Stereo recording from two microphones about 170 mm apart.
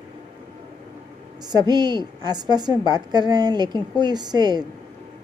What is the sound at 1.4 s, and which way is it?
A woman's voice, 25° right (ahead or behind).